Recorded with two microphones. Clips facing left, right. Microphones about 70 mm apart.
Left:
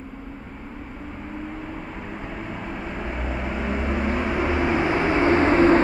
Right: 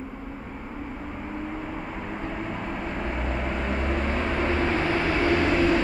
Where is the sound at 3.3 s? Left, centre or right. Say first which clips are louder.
Left 3 dB; centre.